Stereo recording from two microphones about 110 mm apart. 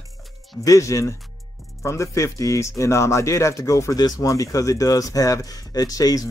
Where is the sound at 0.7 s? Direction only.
30° left (ahead or behind).